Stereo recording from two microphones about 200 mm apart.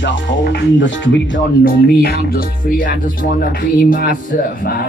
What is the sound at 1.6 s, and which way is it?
Music, 45° left (ahead or behind).